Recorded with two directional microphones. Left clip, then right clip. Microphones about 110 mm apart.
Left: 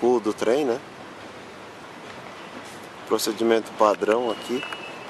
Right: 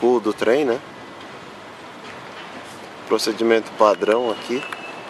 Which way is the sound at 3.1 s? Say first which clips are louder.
Right 4 dB; centre (ahead or behind).